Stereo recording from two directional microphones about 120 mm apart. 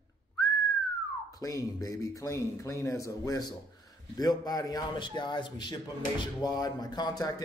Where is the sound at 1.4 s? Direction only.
30° left (ahead or behind).